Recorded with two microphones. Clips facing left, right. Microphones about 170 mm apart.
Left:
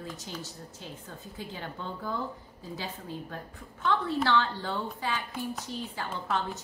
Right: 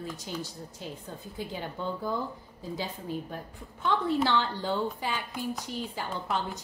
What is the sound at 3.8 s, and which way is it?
A woman's voice, 15° right (ahead or behind).